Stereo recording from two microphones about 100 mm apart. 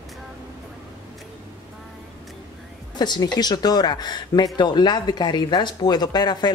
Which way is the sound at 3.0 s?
45° left (ahead or behind).